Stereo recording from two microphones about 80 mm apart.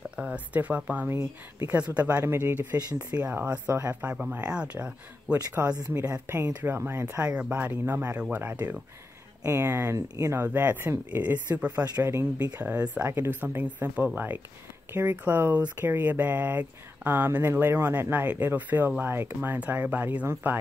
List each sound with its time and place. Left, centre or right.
0.1 s speech: centre
3.7 s speech: right
4.1 s speech: centre
6.2 s speech: right
7.2 s speech: centre
7.5 s speech: right
9.4 s speech: right
10.5 s speech: right
12.0 s speech: right
12.5 s speech: centre